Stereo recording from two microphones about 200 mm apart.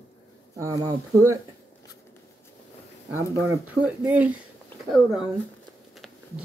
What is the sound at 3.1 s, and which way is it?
A woman's voice, 10° right (ahead or behind).